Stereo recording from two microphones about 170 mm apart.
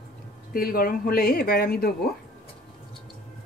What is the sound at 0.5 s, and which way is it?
Speech, 60° left (ahead or behind).